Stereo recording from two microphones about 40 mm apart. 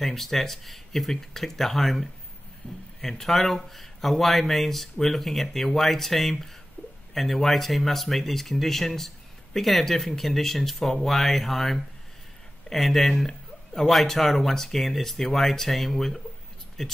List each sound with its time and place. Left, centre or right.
0.0 s speech: centre
2.6 s speech: left
3.0 s speech: centre